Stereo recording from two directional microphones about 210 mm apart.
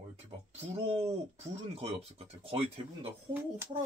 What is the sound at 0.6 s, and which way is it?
Speech, 30° right (ahead or behind).